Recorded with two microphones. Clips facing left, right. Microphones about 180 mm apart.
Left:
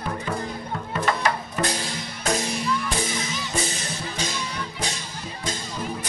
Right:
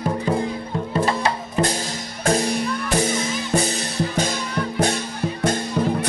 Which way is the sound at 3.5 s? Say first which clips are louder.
Right 8 dB; 55° right (ahead or behind).